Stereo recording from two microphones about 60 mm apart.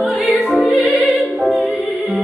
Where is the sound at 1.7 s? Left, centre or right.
Left.